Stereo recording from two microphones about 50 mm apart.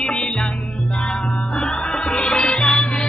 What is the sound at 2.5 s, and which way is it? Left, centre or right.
Music, centre.